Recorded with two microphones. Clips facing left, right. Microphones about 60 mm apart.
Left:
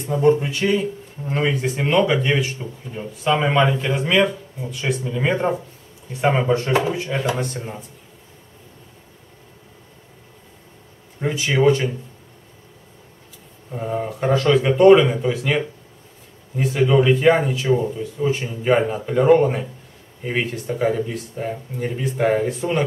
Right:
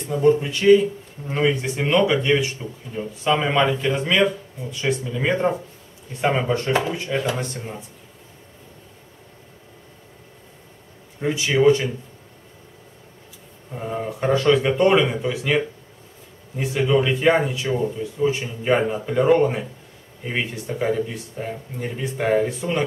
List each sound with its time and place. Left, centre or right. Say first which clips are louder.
0.1 s speech: left 1 dB; centre
11.1 s speech: even; centre
13.7 s speech: left 2 dB; centre
16.8 s speech: left 3 dB; centre
17.1 s speech: left 3 dB; centre